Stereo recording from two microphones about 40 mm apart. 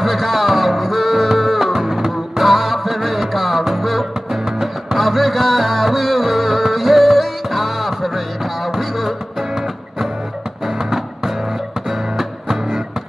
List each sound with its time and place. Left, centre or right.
0.0 s music: centre
12.2 s music: centre